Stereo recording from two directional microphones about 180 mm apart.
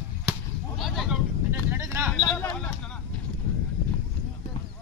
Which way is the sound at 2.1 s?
15° left (ahead or behind).